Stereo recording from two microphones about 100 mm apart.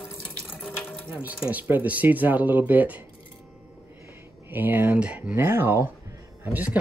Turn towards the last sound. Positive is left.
turn(degrees=-15)  # may be behind; listen again after turning